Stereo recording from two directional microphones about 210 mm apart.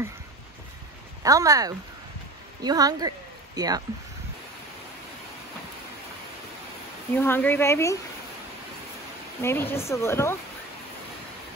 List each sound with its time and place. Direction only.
1.2 s speech: 15° right (ahead or behind)
7.2 s a woman's voice: 10° left (ahead or behind)
9.4 s a woman's voice: 10° left (ahead or behind)